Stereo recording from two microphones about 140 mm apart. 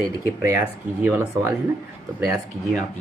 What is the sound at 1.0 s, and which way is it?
Speech, 20° right (ahead or behind).